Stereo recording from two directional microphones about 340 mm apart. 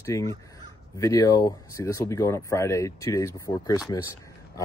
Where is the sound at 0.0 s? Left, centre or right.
Centre.